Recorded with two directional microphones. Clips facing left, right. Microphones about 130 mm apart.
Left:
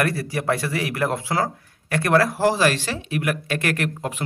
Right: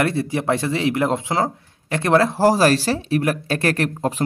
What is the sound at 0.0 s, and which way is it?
Speech, 25° right (ahead or behind).